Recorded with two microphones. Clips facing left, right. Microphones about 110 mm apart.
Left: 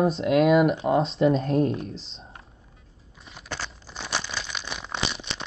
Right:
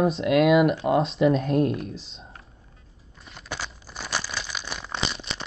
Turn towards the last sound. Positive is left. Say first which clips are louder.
# even
turn(degrees=0)  # may be behind; listen again after turning